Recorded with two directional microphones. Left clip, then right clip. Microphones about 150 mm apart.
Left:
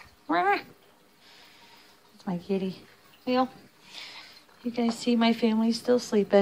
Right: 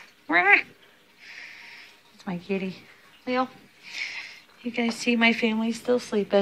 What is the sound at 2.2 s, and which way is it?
Speech, 10° left (ahead or behind).